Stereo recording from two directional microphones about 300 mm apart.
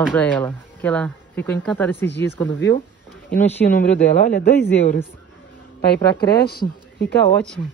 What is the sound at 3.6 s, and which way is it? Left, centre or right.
Speech, left.